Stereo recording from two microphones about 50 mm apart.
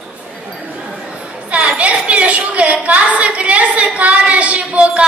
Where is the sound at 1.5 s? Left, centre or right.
Right.